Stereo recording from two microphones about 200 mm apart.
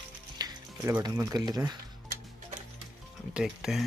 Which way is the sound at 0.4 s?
20° right (ahead or behind).